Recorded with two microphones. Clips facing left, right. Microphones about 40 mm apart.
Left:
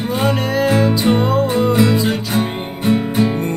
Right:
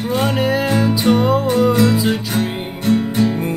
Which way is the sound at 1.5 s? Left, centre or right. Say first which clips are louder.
Even; centre.